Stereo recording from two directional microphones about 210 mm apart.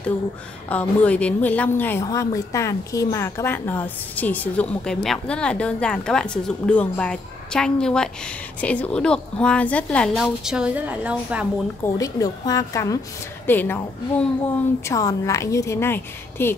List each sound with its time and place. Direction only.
0.7 s a woman's voice: 5° left (ahead or behind)
11.8 s a woman's voice: 15° left (ahead or behind)